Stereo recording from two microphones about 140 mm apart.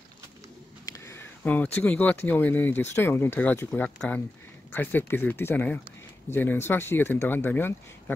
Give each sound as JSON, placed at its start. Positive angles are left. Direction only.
{"t": 1.0, "sound": "speech", "side_deg": 15}